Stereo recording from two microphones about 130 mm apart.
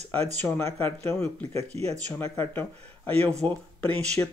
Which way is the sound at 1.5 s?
50° right (ahead or behind).